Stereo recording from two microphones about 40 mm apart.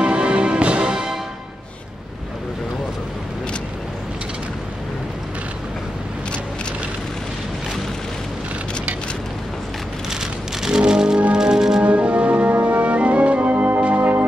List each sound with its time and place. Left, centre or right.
0.0 s music: right
10.6 s music: centre
11.8 s music: right